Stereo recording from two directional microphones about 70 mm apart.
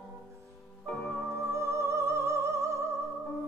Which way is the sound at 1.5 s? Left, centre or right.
Right.